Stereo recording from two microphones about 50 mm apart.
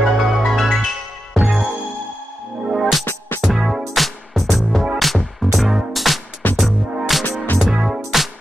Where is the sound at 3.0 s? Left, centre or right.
Left.